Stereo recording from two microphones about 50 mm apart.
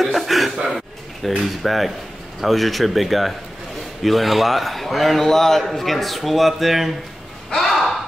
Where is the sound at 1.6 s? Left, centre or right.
Centre.